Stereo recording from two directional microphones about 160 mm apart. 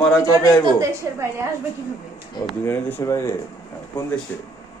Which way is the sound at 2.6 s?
15° left (ahead or behind).